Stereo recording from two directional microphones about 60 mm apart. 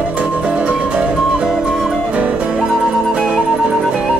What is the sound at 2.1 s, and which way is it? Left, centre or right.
Music, right.